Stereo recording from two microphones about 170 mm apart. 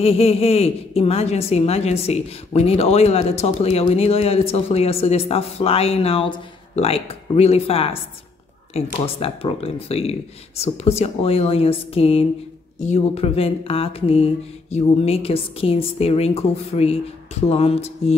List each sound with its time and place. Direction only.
0.0 s a woman's voice: 35° left (ahead or behind)